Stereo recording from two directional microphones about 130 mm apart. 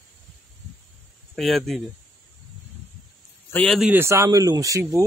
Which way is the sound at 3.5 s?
5° left (ahead or behind).